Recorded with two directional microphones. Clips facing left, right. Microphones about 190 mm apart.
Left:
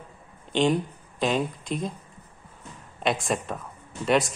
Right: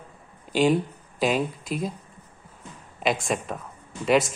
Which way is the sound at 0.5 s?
5° right (ahead or behind).